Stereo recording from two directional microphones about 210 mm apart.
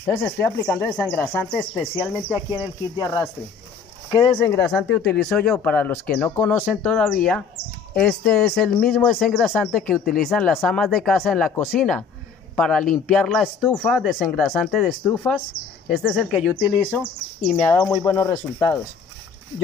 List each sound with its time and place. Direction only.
0.0 s speech: 5° left (ahead or behind)
3.0 s a man's voice: 15° left (ahead or behind)